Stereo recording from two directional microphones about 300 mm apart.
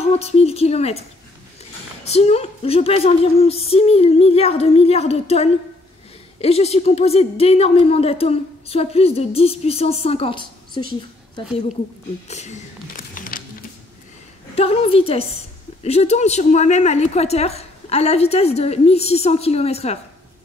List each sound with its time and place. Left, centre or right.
0.0 s a woman's voice: centre
2.0 s a woman's voice: left
12.3 s a sound: left
14.5 s a woman's voice: centre